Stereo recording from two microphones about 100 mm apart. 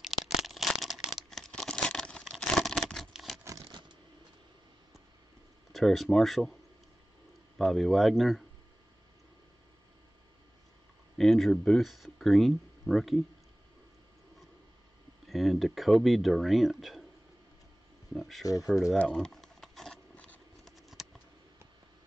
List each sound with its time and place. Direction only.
0.0 s a sound: centre (ahead or behind)
2.3 s tearing: centre (ahead or behind)
3.4 s a sound: 35° right (ahead or behind)
5.7 s a man's voice: centre (ahead or behind)
7.5 s a man's voice: centre (ahead or behind)
11.1 s speech: centre (ahead or behind)
15.2 s speech: centre (ahead or behind)
18.1 s speech: centre (ahead or behind)
18.4 s speech: 35° left (ahead or behind)
18.9 s a sound: 10° left (ahead or behind)
20.7 s typing: centre (ahead or behind)